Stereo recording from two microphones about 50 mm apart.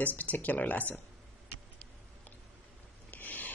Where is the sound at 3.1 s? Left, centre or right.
Left.